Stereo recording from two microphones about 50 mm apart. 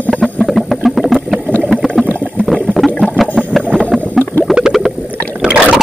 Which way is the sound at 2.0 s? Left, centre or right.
Left.